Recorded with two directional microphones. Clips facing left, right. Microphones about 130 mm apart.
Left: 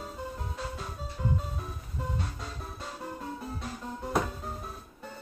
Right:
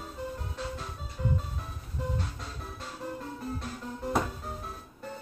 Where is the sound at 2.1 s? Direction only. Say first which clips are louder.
Even; centre (ahead or behind).